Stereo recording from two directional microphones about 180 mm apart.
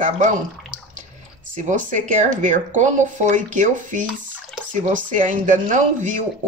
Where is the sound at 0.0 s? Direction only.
45° right (ahead or behind).